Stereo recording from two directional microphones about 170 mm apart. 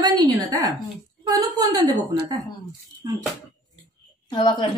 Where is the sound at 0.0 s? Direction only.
20° right (ahead or behind).